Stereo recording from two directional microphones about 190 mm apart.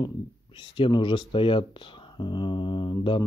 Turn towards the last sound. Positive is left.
turn(degrees=25)  # may be behind; listen again after turning